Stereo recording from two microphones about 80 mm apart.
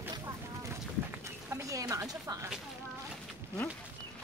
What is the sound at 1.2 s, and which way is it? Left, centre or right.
Chicken, right.